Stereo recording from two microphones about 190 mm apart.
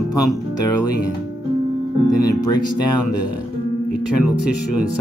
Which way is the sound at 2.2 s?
20° left (ahead or behind).